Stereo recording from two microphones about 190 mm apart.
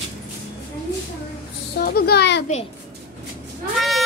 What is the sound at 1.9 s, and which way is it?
Speech, 55° left (ahead or behind).